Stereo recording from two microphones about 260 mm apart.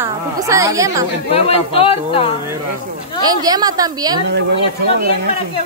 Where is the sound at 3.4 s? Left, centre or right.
Centre.